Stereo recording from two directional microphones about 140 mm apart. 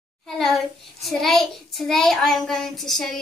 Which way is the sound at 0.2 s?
5° left (ahead or behind).